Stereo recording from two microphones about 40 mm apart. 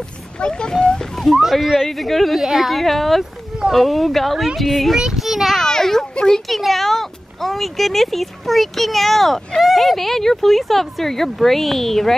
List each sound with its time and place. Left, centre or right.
0.4 s speech: centre
1.3 s a child's voice: centre
5.7 s children playing: centre
6.4 s a child's voice: centre